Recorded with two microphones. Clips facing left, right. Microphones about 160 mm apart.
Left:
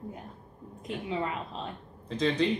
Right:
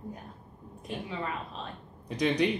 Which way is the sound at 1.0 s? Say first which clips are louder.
Left 6 dB; 20° left (ahead or behind).